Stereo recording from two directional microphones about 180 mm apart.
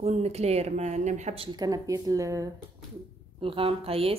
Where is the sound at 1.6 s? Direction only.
20° right (ahead or behind).